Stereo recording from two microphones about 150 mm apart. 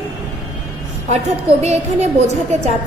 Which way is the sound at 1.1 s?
45° right (ahead or behind).